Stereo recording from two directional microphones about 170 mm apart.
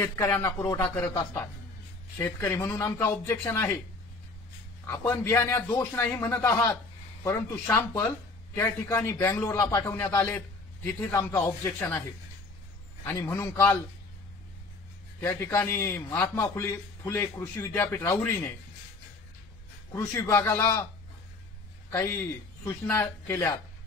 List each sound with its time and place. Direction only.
0.0 s a man's voice: 15° left (ahead or behind)
4.8 s a man's voice: 15° left (ahead or behind)
13.0 s a man's voice: 15° left (ahead or behind)
15.1 s a man's voice: 15° left (ahead or behind)
19.9 s a man's voice: 15° left (ahead or behind)
21.9 s a man's voice: 15° left (ahead or behind)